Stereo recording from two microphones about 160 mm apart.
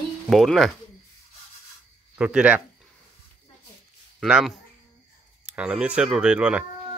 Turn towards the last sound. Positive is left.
turn(degrees=-10)  # may be behind; listen again after turning